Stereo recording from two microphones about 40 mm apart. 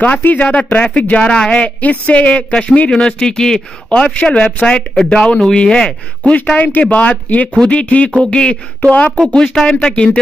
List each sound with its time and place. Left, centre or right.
0.2 s speech: left
1.1 s speech: left
1.8 s speech: left
2.9 s speech: left
3.9 s speech: left
6.5 s speech: left
7.6 s speech: left
8.9 s speech: left
9.3 s speech: centre